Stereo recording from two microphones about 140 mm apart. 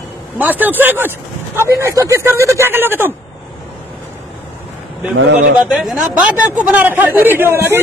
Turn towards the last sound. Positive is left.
turn(degrees=-15)  # may be behind; listen again after turning